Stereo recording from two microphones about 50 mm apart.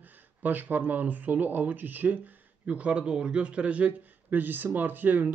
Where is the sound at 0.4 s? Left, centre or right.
Right.